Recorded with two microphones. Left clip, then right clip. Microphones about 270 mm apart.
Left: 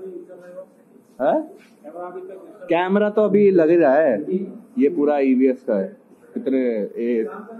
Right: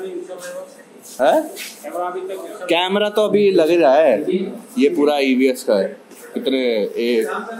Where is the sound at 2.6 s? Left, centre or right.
Right.